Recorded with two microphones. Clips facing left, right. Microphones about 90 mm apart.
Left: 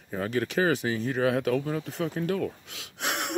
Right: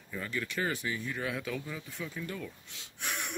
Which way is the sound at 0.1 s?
60° left (ahead or behind).